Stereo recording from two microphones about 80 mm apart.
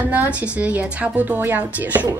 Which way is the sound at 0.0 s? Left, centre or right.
Right.